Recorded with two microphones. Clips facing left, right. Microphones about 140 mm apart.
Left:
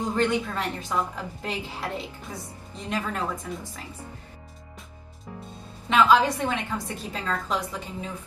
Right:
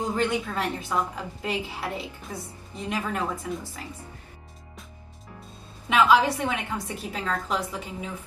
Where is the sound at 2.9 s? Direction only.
15° right (ahead or behind).